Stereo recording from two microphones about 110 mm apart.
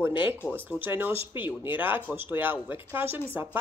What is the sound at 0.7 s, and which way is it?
A woman's voice, 20° right (ahead or behind).